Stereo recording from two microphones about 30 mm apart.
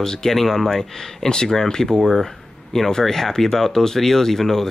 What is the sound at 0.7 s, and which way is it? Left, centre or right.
Speech, left.